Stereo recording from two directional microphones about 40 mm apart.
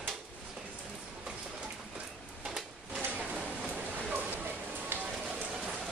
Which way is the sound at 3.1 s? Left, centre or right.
Right.